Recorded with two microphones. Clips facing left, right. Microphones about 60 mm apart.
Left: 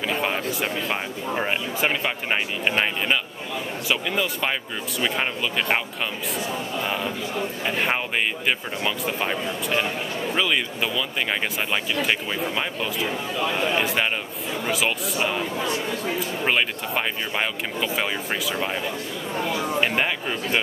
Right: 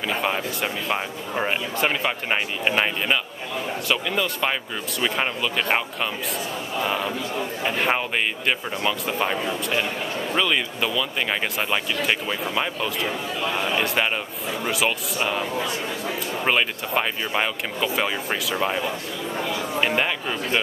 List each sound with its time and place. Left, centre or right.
0.2 s speech: centre
6.8 s speech: centre
16.4 s speech: centre
19.8 s speech: centre